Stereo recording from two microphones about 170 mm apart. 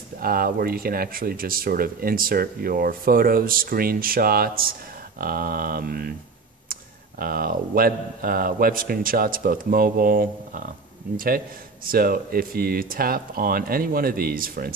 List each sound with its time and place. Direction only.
0.2 s speech: 60° right (ahead or behind)